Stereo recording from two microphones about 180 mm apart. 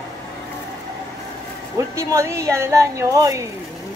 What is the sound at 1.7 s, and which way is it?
Speech, 15° right (ahead or behind).